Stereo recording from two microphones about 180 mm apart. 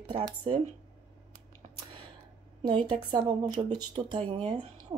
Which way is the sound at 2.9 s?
25° right (ahead or behind).